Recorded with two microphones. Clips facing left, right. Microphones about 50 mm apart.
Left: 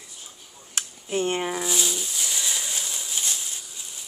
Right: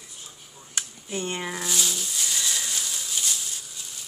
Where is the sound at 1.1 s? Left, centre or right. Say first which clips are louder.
Left 5 dB; left.